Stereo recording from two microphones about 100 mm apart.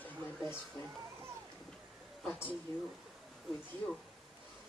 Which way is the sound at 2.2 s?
15° left (ahead or behind).